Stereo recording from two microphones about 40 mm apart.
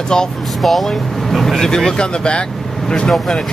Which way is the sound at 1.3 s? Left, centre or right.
Centre.